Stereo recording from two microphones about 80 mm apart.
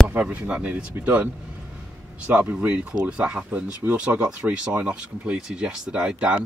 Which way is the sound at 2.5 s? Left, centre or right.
Centre.